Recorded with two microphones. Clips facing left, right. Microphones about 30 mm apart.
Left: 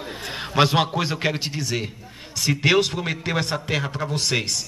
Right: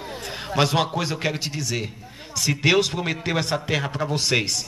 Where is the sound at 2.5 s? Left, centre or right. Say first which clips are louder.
Left 1 dB; centre.